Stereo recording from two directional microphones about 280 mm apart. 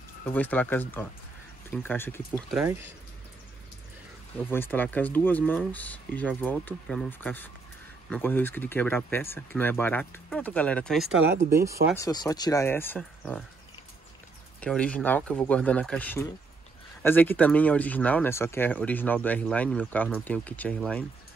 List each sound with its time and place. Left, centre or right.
0.3 s speech: centre
2.3 s speech: centre
4.5 s speech: centre
11.5 s speech: centre
12.0 s speech: centre
14.6 s speech: centre